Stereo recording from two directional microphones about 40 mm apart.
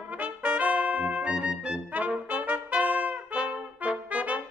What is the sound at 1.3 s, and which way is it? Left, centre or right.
Trumpet, right.